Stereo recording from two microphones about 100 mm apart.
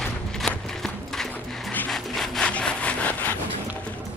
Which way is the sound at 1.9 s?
5° left (ahead or behind).